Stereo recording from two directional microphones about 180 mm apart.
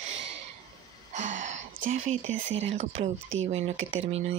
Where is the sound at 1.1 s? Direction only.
40° right (ahead or behind).